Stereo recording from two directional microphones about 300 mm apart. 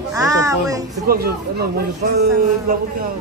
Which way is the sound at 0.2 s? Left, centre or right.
Centre.